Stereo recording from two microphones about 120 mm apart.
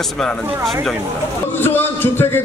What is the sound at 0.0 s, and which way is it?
Speech, 5° left (ahead or behind).